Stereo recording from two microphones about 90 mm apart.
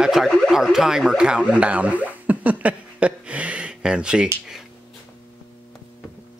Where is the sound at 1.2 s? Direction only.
10° right (ahead or behind).